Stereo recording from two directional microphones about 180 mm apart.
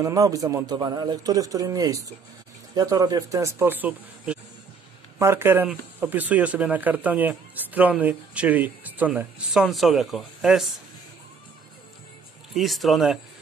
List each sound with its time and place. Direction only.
0.0 s a man's voice: 20° right (ahead or behind); by 10.7 s centre (ahead or behind)
12.5 s speech: centre (ahead or behind)